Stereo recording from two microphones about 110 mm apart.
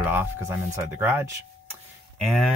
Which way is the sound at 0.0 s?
20° right (ahead or behind).